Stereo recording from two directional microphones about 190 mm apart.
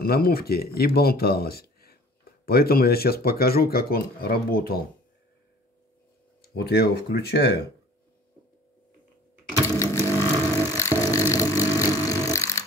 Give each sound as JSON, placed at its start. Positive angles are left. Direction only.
{"t": 0.0, "sound": "speech", "side_deg": 55}
{"t": 6.5, "sound": "speech", "side_deg": 55}
{"t": 9.5, "sound": "sewing machine", "side_deg": 15}
{"t": 10.7, "sound": "a sound", "side_deg": 15}